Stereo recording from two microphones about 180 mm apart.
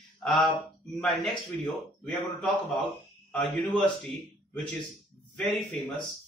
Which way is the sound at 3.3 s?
Centre (ahead or behind).